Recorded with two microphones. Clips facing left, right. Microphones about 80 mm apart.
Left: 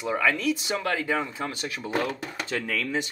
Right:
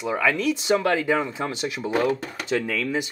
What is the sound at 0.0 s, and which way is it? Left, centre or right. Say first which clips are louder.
Speech: right 2 dB; centre.